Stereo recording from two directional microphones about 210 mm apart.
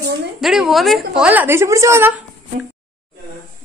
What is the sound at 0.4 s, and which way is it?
A man's voice, centre (ahead or behind).